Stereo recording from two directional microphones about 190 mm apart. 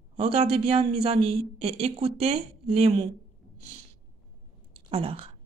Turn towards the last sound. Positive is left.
turn(degrees=-30)  # may be behind; listen again after turning